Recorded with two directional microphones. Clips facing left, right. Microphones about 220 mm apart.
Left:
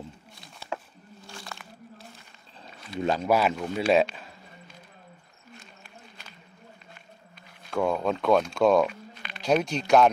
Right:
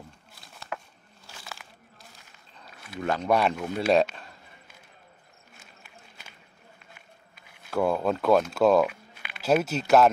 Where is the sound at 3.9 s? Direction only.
Centre (ahead or behind).